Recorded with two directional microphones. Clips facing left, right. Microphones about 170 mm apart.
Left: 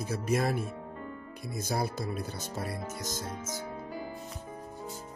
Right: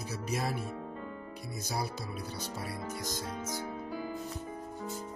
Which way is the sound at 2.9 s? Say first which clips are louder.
Even; 20° left (ahead or behind).